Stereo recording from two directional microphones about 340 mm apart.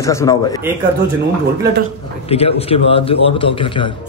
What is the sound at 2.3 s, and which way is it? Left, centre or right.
A man's voice, centre.